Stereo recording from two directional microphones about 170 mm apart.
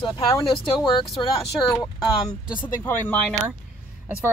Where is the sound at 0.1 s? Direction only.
25° left (ahead or behind).